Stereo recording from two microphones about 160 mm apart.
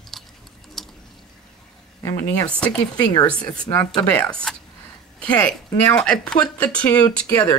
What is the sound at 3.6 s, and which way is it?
A woman's voice, 5° left (ahead or behind).